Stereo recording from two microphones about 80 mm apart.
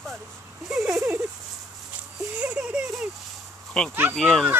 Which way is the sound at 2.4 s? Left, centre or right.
Centre.